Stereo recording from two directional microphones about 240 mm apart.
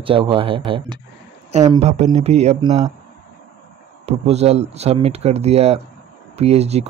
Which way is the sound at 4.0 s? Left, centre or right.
Right.